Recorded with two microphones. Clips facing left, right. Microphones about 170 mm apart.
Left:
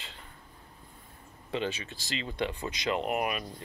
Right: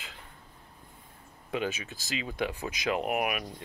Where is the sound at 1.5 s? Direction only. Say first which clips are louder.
Right 1 dB; 10° right (ahead or behind).